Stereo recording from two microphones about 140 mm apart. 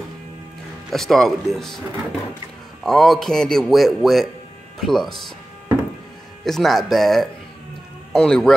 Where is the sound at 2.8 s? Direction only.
Centre (ahead or behind).